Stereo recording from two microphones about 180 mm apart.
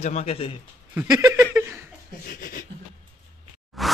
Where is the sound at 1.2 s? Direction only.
15° right (ahead or behind).